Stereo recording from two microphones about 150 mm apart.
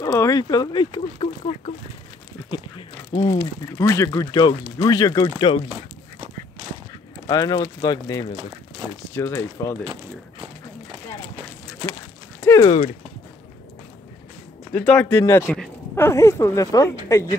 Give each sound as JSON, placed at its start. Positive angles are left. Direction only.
{"t": 0.0, "sound": "speech", "side_deg": 20}
{"t": 3.2, "sound": "speech", "side_deg": 20}
{"t": 7.2, "sound": "speech", "side_deg": 25}
{"t": 12.4, "sound": "a sound", "side_deg": 15}
{"t": 14.7, "sound": "speech", "side_deg": 10}